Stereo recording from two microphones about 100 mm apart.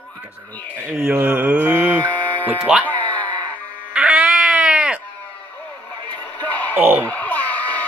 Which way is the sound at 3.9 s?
10° right (ahead or behind).